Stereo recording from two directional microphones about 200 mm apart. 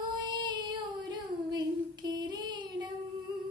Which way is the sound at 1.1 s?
20° right (ahead or behind).